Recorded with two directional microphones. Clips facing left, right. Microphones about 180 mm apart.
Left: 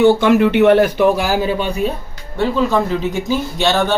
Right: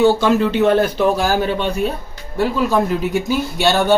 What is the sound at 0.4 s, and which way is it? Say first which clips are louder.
Speech: left 4 dB; 65° left (ahead or behind).